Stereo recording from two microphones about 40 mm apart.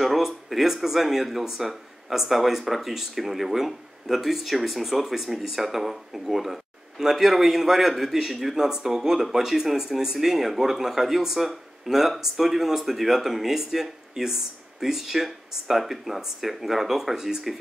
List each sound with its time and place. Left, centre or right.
0.0 s speech: centre